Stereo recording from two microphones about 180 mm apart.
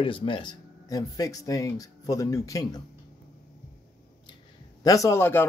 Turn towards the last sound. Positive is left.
turn(degrees=15)  # may be behind; listen again after turning